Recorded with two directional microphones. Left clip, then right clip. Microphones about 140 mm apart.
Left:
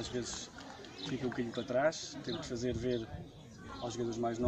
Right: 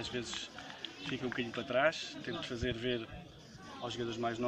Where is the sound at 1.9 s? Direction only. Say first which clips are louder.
Right 1 dB; 5° right (ahead or behind).